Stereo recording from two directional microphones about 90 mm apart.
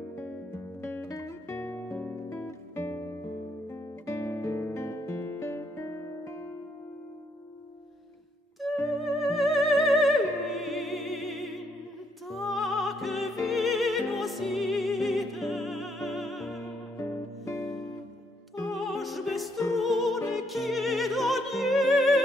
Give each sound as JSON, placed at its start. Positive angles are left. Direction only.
{"t": 0.2, "sound": "music", "side_deg": 25}
{"t": 1.0, "sound": "music", "side_deg": 35}
{"t": 8.9, "sound": "music", "side_deg": 0}
{"t": 17.0, "sound": "music", "side_deg": 30}
{"t": 18.7, "sound": "music", "side_deg": 0}